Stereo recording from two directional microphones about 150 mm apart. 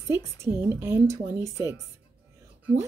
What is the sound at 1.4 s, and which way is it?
Speech, 25° left (ahead or behind).